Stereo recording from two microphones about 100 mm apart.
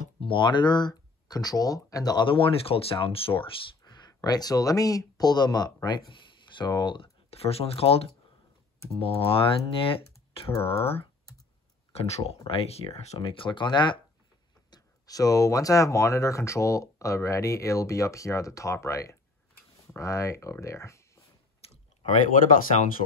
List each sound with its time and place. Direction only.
0.2 s speech: 55° left (ahead or behind); by 2.2 s 40° left (ahead or behind)
2.2 s speech: 65° left (ahead or behind); by 7.1 s 50° left (ahead or behind)
7.2 s speech: 85° left
11.9 s speech: 85° left; by 13.9 s 50° left (ahead or behind)
14.7 s speech: 40° left (ahead or behind)